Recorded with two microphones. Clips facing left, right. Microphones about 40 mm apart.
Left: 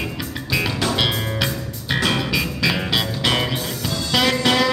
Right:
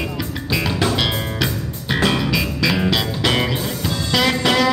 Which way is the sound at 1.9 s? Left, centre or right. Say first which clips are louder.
Right 2 dB; centre.